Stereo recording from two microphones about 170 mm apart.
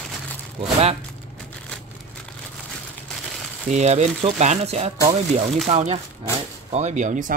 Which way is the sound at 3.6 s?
40° right (ahead or behind).